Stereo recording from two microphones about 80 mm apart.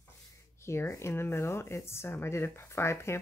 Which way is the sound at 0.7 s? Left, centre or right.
Left.